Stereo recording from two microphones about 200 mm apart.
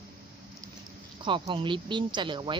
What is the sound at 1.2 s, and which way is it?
A woman's voice, 25° right (ahead or behind).